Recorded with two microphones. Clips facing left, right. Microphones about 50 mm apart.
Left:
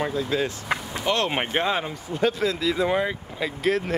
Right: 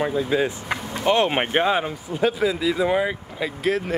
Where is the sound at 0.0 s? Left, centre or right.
Centre.